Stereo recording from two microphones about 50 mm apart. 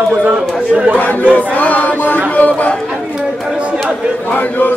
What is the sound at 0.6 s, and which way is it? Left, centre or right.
Speech, centre.